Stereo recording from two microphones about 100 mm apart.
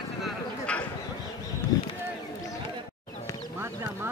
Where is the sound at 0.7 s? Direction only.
10° left (ahead or behind).